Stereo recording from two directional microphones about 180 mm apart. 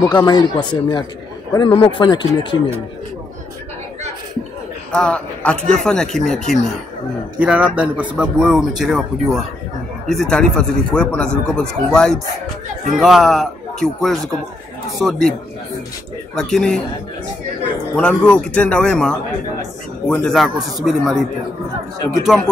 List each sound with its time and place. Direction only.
0.0 s speech: 20° left (ahead or behind)
4.9 s speech: 5° left (ahead or behind)
16.3 s speech: centre (ahead or behind)
17.9 s speech: 5° left (ahead or behind)